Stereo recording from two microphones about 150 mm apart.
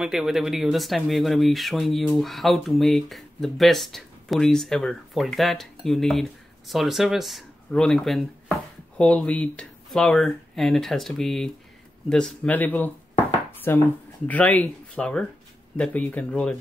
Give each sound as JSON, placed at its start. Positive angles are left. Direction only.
{"t": 0.0, "sound": "speech", "side_deg": -5}